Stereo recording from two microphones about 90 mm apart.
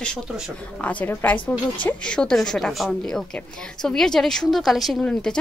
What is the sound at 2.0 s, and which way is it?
A woman's voice, 10° left (ahead or behind).